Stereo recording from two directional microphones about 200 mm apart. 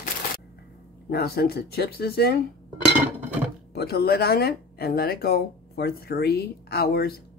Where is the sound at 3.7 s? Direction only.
50° left (ahead or behind).